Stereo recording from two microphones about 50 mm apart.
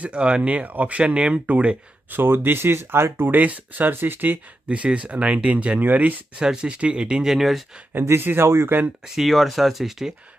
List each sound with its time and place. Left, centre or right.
0.0 s speech: right
2.0 s speech: right
4.6 s speech: right
6.3 s speech: centre
8.2 s speech: right
9.0 s speech: centre
9.3 s speech: centre